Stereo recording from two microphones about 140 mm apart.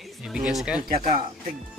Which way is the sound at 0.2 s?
5° right (ahead or behind).